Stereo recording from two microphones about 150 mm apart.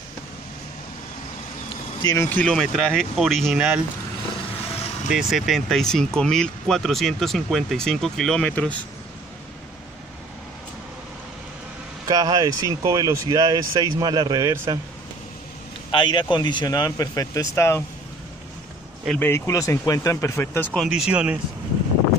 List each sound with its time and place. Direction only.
2.0 s speech: 25° left (ahead or behind)
2.2 s speech: 10° left (ahead or behind)
5.1 s speech: centre (ahead or behind)
12.1 s speech: 25° right (ahead or behind)
15.9 s speech: 30° left (ahead or behind)
19.0 s speech: 15° left (ahead or behind)
20.7 s speech: centre (ahead or behind)